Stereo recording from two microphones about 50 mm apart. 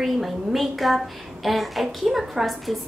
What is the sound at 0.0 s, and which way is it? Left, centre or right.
A woman's voice, centre.